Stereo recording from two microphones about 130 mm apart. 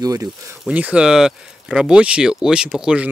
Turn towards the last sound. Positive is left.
turn(degrees=-10)  # may be behind; listen again after turning